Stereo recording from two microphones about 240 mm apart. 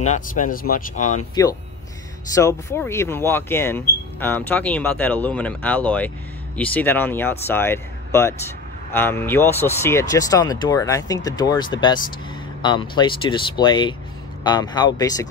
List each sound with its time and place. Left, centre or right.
0.0 s speech: left
1.3 s speech: centre